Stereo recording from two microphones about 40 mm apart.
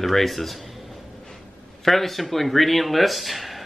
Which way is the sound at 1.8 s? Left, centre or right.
Centre.